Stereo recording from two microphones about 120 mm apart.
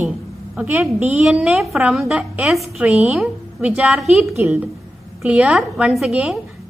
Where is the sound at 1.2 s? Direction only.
5° right (ahead or behind).